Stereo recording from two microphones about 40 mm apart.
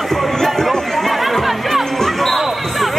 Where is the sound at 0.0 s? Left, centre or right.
Centre.